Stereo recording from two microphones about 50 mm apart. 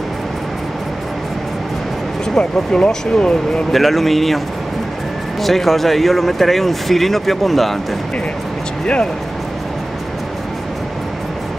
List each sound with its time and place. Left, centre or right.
2.3 s speech: centre
3.7 s speech: centre
5.4 s speech: centre